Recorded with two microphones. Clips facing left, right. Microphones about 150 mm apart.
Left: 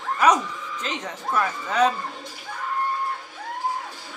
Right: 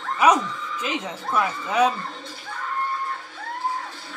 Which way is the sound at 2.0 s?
10° left (ahead or behind).